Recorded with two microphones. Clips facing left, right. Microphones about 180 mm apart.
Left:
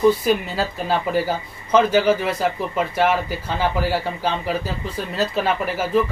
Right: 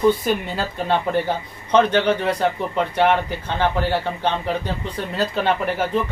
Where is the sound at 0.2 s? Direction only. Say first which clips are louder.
Left 2 dB; 5° left (ahead or behind).